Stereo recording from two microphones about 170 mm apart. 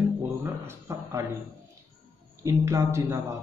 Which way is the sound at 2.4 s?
15° right (ahead or behind).